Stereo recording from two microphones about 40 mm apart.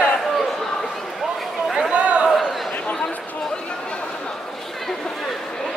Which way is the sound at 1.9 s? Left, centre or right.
Right.